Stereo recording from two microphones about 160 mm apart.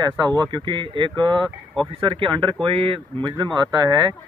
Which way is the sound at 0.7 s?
30° right (ahead or behind).